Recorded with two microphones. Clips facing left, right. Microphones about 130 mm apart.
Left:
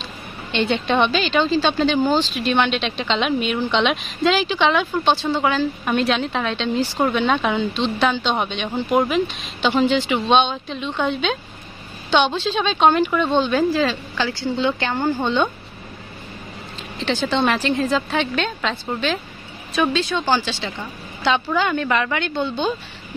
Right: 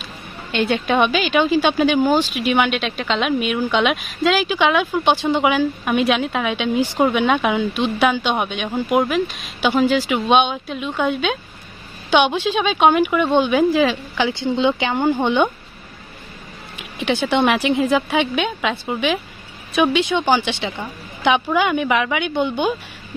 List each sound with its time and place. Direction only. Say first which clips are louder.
0.0 s a woman's voice: left 1 dB; 5° right (ahead or behind)
16.7 s a woman's voice: right 3 dB; 15° right (ahead or behind)